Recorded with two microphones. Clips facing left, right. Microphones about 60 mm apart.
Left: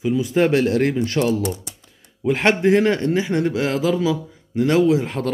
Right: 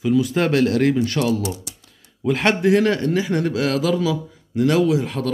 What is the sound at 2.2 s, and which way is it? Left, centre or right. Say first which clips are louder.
A man's voice: left 1 dB; left.